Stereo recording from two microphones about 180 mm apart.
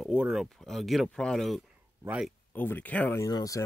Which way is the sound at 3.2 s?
20° left (ahead or behind).